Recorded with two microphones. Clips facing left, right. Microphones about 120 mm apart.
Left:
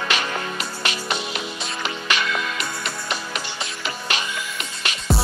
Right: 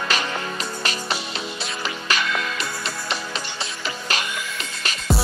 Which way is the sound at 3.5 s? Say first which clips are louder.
Even; 35° right (ahead or behind).